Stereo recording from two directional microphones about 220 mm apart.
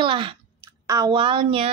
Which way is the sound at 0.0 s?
20° right (ahead or behind).